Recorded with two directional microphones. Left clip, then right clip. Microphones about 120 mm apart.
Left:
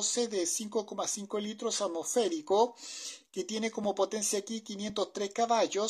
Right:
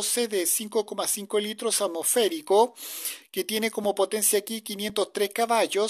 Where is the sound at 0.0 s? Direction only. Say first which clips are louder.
Right 5 dB; 25° right (ahead or behind).